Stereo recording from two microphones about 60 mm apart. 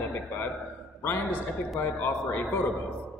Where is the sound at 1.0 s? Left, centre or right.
Left.